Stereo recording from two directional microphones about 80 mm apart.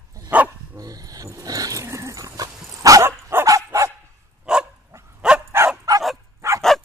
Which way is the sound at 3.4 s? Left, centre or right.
Right.